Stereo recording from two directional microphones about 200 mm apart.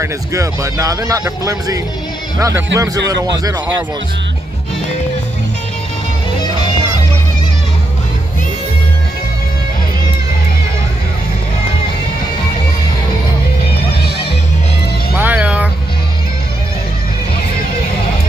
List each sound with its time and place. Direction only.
0.0 s speech: 15° right (ahead or behind)
15.1 s music: 5° right (ahead or behind)